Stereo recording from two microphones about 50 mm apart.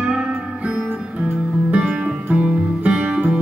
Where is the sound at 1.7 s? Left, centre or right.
Right.